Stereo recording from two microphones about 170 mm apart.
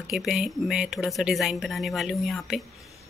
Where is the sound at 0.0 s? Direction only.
Centre (ahead or behind).